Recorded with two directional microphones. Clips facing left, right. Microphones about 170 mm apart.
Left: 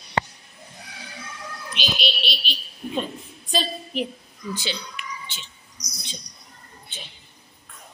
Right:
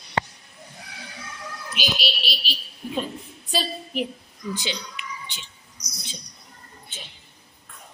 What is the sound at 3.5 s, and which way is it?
Speech, 10° right (ahead or behind).